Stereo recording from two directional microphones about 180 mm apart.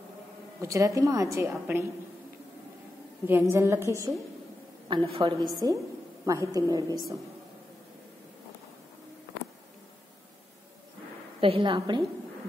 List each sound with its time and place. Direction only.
0.6 s a woman's voice: 15° right (ahead or behind)
3.3 s a woman's voice: 10° right (ahead or behind)
4.8 s a woman's voice: 30° right (ahead or behind)
11.4 s a woman's voice: 30° right (ahead or behind)